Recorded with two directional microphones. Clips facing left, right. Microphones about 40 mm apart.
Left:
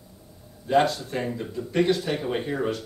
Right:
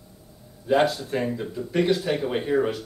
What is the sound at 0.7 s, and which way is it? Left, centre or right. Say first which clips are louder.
Speech: right 1 dB; centre.